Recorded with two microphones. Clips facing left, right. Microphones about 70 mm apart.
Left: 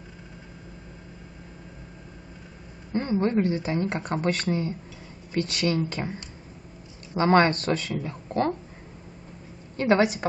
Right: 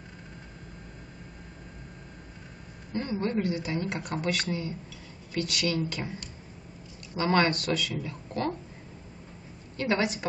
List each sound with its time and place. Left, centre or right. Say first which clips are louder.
2.9 s speech: left 5 dB; left
9.8 s a woman's voice: left 7 dB; left